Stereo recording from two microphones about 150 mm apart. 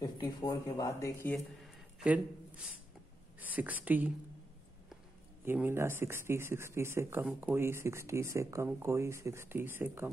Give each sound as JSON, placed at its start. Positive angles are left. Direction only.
{"t": 0.0, "sound": "speech", "side_deg": 25}
{"t": 2.0, "sound": "speech", "side_deg": -10}
{"t": 5.4, "sound": "speech", "side_deg": -15}